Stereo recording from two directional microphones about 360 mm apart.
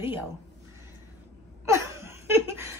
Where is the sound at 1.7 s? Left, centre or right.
Centre.